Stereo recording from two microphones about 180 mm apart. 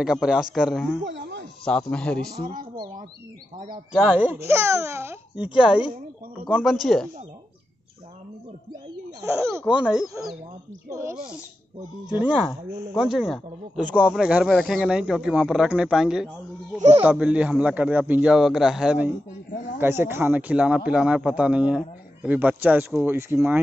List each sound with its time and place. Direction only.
0.0 s speech: 5° right (ahead or behind)
1.0 s snake: 80° right
1.6 s speech: 5° left (ahead or behind)
2.4 s a sound: 50° right (ahead or behind)
3.9 s speech: centre (ahead or behind)
4.4 s speech: 15° right (ahead or behind)
9.2 s speech: 15° right (ahead or behind)
9.8 s speech: 5° right (ahead or behind)
10.9 s speech: 15° right (ahead or behind)
12.1 s speech: 5° right (ahead or behind)